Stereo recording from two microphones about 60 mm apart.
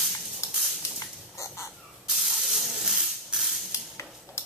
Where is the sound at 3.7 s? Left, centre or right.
Left.